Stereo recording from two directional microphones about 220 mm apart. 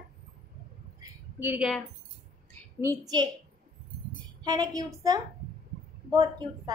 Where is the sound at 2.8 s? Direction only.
15° right (ahead or behind).